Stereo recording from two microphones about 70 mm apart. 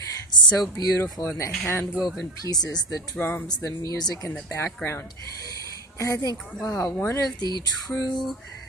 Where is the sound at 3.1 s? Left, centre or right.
Left.